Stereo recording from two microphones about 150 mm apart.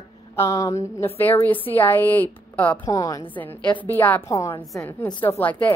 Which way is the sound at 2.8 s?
25° left (ahead or behind).